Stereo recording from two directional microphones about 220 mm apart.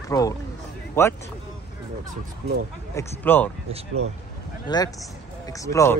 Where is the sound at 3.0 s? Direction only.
10° left (ahead or behind).